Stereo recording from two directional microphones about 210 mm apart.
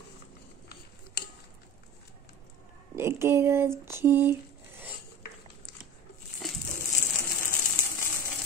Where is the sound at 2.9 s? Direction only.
10° right (ahead or behind).